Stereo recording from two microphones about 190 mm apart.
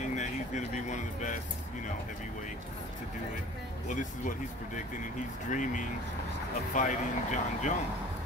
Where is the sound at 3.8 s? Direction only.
40° left (ahead or behind).